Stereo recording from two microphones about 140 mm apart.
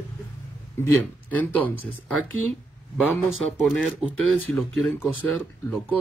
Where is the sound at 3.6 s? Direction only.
5° right (ahead or behind).